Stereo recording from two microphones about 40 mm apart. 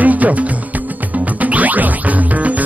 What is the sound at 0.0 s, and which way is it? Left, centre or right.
Music, right.